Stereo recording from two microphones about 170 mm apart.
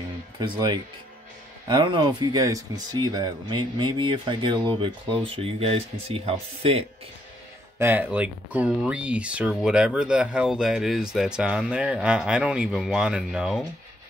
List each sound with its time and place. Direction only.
0.4 s speech: 25° right (ahead or behind)
7.8 s speech: 10° right (ahead or behind)